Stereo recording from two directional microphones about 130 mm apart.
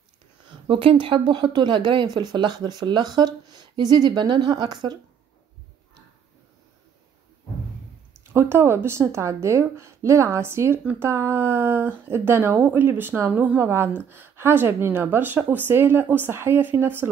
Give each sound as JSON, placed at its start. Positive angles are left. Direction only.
{"t": 0.5, "sound": "speech", "side_deg": -40}
{"t": 8.3, "sound": "a woman's voice", "side_deg": -20}